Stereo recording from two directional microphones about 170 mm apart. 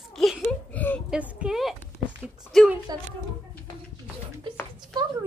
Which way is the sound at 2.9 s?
25° right (ahead or behind).